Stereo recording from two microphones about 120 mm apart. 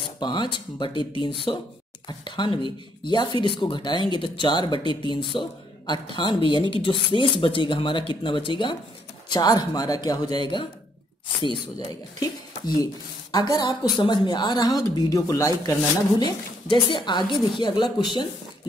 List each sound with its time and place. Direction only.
0.2 s a woman's voice: 40° left (ahead or behind)
9.3 s a woman's voice: 35° left (ahead or behind)
12.2 s a woman's voice: 30° left (ahead or behind)